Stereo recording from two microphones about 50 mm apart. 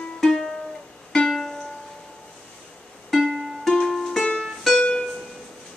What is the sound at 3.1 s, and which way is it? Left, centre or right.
Music, centre.